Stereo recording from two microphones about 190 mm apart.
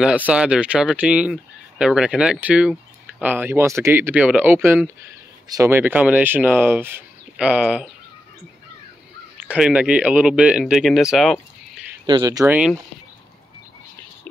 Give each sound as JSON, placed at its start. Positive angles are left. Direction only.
{"t": 0.0, "sound": "speech", "side_deg": -5}
{"t": 9.5, "sound": "speech", "side_deg": -5}
{"t": 12.1, "sound": "speech", "side_deg": -20}